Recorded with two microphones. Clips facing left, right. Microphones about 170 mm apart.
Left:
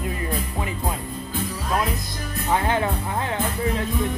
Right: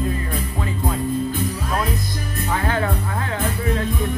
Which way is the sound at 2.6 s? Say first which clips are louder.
Right 3 dB; 20° left (ahead or behind).